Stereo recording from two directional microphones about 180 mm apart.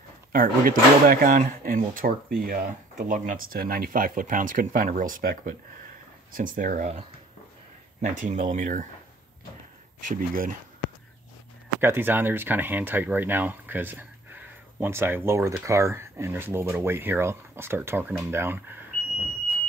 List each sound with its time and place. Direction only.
0.3 s speech: 50° right (ahead or behind)
10.0 s speech: 50° right (ahead or behind)
11.8 s speech: 10° right (ahead or behind)